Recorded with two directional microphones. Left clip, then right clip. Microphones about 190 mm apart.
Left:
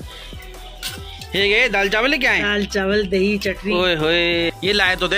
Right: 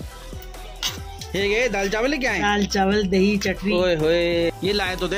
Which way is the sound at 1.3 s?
Centre (ahead or behind).